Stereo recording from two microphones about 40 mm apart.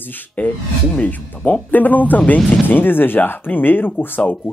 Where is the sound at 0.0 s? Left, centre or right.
Left.